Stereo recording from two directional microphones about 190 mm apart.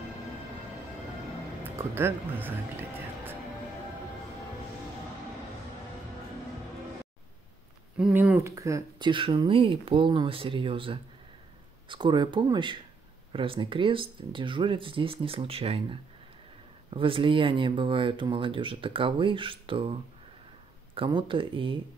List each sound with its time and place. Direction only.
8.0 s speech: 10° right (ahead or behind); by 21.7 s 25° right (ahead or behind)